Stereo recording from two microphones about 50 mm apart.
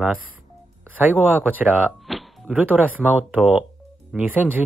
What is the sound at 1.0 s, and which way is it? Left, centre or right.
Speech, right.